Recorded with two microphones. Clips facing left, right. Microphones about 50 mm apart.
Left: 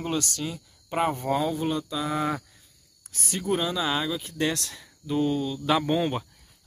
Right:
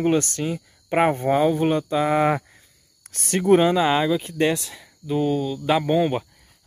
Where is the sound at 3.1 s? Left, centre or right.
Right.